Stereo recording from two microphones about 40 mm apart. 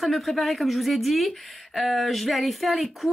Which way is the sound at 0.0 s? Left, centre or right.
Centre.